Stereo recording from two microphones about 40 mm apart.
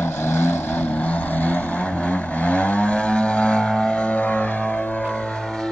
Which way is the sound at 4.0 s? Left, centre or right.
Left.